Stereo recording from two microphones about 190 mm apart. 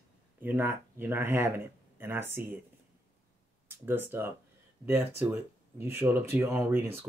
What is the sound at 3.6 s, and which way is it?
Speech, 10° right (ahead or behind).